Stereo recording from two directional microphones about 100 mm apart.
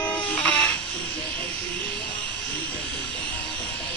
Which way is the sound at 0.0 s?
15° left (ahead or behind).